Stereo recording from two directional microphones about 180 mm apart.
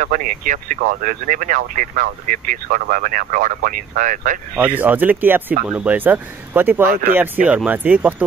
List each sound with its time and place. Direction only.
0.0 s speech: 45° right (ahead or behind)
4.6 s speech: 10° right (ahead or behind)